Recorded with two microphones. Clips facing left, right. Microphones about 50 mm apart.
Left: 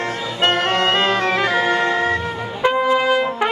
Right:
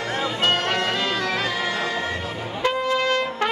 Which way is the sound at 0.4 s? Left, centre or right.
Left.